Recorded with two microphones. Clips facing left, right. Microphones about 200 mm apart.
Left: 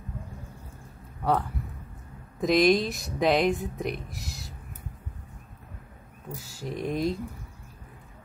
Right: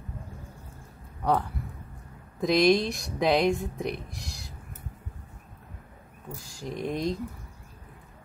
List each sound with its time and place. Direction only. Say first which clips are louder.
1.2 s a man's voice: even; centre (ahead or behind)
6.3 s speech: left 1 dB; 5° left (ahead or behind)